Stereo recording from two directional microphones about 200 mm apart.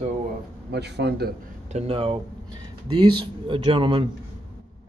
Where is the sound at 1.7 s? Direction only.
30° right (ahead or behind).